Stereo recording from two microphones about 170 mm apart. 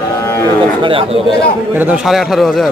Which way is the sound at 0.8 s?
30° right (ahead or behind).